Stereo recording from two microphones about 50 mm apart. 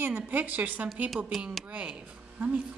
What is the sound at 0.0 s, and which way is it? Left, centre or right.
Speech, right.